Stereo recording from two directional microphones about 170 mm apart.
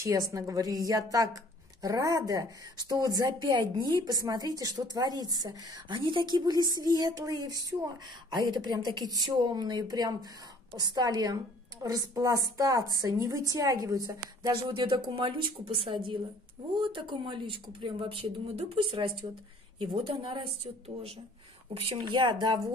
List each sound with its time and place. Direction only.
0.0 s a woman's voice: 20° right (ahead or behind)
21.7 s a woman's voice: 30° right (ahead or behind)